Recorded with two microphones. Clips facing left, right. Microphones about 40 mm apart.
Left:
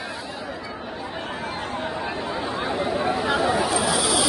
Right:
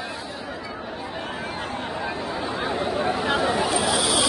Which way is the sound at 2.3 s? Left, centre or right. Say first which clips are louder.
Left 1 dB; centre.